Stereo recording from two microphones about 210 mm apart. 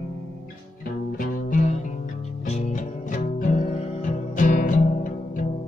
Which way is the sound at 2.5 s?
35° left (ahead or behind).